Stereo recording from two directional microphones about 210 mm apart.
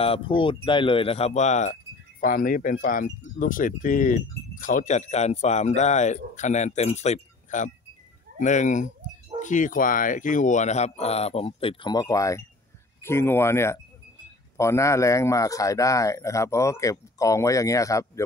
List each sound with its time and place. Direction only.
0.0 s speech: 25° left (ahead or behind)